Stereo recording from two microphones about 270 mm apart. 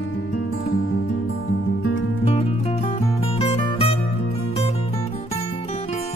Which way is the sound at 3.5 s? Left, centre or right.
Left.